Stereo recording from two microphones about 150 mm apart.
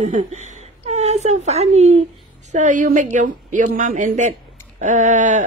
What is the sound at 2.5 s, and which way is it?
Speech, 55° right (ahead or behind).